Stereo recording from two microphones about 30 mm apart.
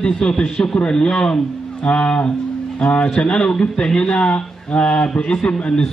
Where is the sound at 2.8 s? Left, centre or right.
Centre.